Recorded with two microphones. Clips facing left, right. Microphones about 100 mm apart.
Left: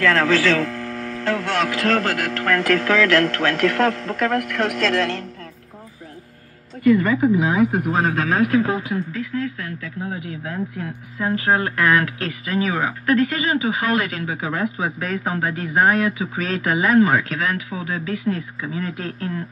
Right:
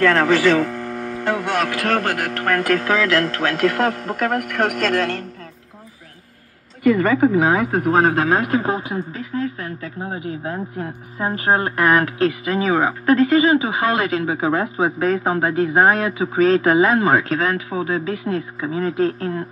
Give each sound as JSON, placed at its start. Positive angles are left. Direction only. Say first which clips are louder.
{"t": 0.0, "sound": "a man's voice", "louder": "right 3 dB", "side_deg": -20}
{"t": 4.4, "sound": "a man's voice", "louder": "right 1 dB", "side_deg": -50}
{"t": 7.0, "sound": "speech", "louder": "right 2 dB", "side_deg": -60}
{"t": 7.6, "sound": "speech", "louder": "left 1 dB", "side_deg": -35}
{"t": 7.9, "sound": "a man's voice", "louder": "right 5 dB", "side_deg": -45}
{"t": 8.3, "sound": "speech", "louder": "even", "side_deg": -30}